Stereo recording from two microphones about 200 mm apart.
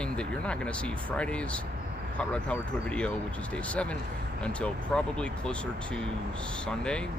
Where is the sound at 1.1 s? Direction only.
5° left (ahead or behind).